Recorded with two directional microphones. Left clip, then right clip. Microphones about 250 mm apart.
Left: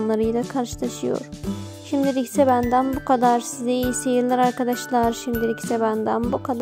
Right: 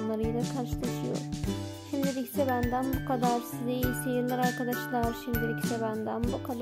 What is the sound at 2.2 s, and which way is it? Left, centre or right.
Speech, left.